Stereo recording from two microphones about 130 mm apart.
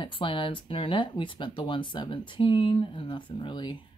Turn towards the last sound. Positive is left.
turn(degrees=40)  # may be behind; listen again after turning